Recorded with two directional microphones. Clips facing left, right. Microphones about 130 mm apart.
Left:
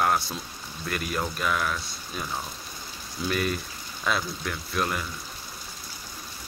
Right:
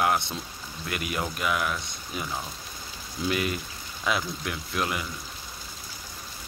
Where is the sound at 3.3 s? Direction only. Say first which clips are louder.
Even; 15° right (ahead or behind).